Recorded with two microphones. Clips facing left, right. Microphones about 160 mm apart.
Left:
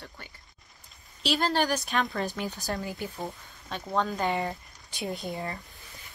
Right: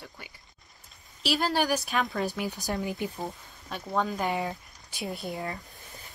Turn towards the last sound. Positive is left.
turn(degrees=0)  # may be behind; listen again after turning